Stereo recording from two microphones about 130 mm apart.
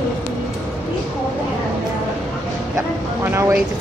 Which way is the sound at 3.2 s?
15° right (ahead or behind).